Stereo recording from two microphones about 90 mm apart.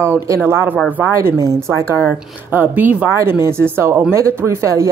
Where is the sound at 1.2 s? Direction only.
35° right (ahead or behind).